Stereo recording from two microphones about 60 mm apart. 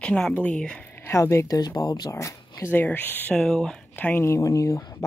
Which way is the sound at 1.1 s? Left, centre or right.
Left.